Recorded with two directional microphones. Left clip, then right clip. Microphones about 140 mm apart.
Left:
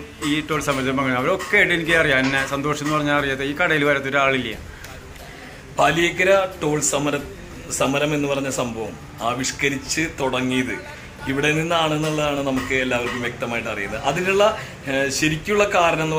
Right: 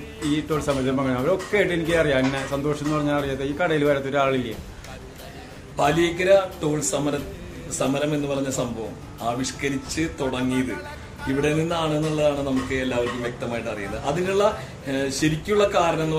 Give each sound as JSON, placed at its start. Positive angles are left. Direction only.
{"t": 0.3, "sound": "speech", "side_deg": -25}
{"t": 5.8, "sound": "a man's voice", "side_deg": 20}